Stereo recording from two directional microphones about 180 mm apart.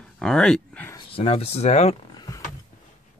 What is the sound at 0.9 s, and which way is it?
Speech, 30° left (ahead or behind).